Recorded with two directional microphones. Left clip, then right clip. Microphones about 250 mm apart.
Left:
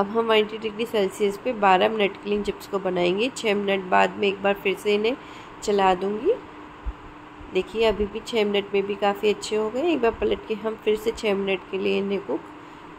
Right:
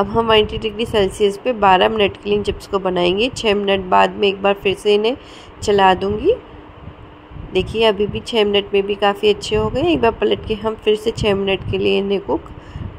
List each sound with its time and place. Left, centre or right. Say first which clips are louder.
0.0 s a woman's voice: right 6 dB; centre
7.5 s a woman's voice: right 6 dB; centre